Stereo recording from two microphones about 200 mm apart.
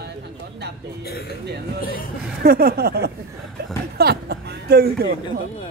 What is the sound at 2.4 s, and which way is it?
Speech, 50° right (ahead or behind).